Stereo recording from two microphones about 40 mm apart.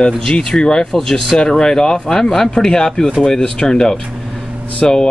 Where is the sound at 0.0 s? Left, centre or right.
Centre.